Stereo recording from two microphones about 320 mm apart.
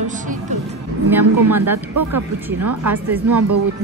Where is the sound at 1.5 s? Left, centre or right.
Centre.